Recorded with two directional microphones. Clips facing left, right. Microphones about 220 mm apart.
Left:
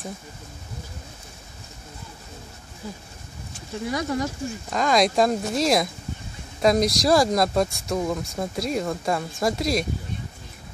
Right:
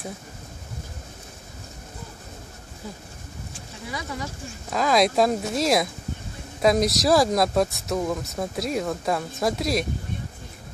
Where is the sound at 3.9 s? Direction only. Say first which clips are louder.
Left 7 dB; 45° left (ahead or behind).